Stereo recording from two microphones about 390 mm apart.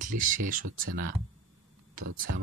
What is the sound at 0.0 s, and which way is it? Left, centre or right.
Speech, centre.